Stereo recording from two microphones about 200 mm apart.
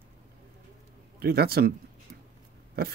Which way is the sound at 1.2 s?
50° right (ahead or behind).